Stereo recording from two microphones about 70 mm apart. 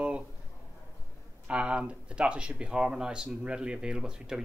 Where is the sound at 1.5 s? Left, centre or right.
Centre.